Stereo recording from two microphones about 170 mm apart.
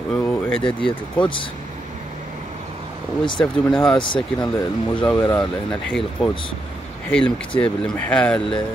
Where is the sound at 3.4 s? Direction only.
Centre (ahead or behind).